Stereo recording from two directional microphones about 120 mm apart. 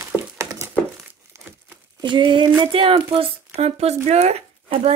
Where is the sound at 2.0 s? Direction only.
40° right (ahead or behind).